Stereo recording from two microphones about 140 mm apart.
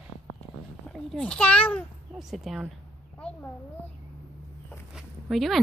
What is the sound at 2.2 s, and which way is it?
Speech, 5° right (ahead or behind).